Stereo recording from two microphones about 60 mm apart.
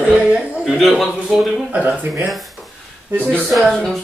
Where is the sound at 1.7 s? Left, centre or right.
Right.